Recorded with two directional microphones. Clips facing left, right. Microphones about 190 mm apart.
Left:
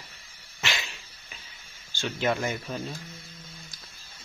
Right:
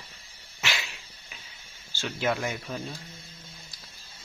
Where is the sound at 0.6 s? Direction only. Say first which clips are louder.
Even; 5° right (ahead or behind).